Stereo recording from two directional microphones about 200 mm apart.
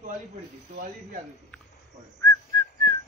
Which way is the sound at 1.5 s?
5° left (ahead or behind).